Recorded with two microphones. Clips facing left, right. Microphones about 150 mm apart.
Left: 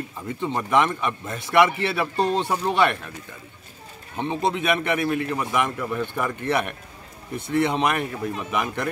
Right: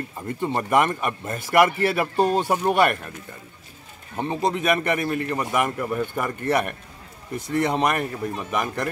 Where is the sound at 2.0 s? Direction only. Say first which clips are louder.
Even; 10° right (ahead or behind).